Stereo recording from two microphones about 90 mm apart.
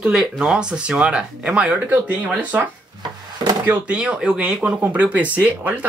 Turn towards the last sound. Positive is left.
turn(degrees=-20)  # may be behind; listen again after turning